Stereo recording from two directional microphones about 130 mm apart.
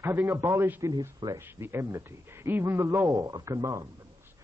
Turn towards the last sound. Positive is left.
turn(degrees=-25)  # may be behind; listen again after turning